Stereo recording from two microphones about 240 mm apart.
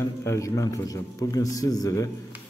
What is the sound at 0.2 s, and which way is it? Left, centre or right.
A man's voice, centre.